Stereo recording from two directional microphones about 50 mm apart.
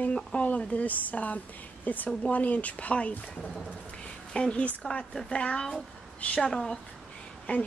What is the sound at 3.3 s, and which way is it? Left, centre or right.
A woman's voice, centre.